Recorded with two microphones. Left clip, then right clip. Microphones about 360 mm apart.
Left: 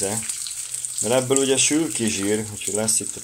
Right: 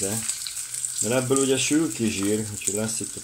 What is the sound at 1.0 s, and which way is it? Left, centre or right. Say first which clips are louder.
Speech: left 3 dB; left.